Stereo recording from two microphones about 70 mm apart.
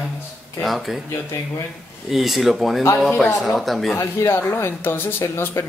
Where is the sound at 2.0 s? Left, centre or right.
Centre.